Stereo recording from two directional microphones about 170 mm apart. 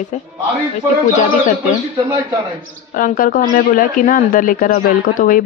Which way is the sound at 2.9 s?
55° left (ahead or behind).